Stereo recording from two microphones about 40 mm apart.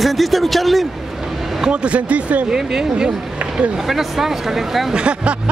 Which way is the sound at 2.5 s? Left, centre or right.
Centre.